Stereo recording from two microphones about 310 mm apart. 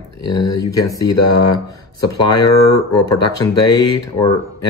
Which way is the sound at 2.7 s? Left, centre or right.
Left.